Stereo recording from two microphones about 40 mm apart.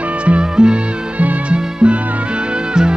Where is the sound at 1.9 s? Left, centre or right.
Right.